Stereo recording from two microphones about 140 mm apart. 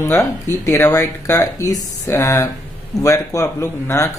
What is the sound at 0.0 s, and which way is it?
A man's voice, 20° left (ahead or behind).